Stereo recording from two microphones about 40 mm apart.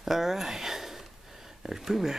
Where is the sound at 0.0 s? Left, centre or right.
Centre.